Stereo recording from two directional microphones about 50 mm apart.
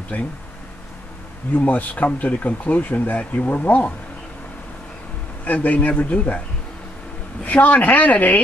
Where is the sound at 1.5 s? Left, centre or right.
Left.